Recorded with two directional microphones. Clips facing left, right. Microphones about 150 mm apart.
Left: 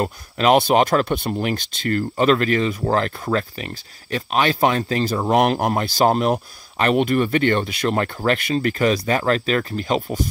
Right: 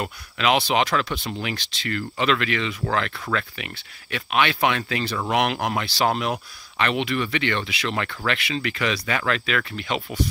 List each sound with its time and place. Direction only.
0.0 s speech: 45° left (ahead or behind)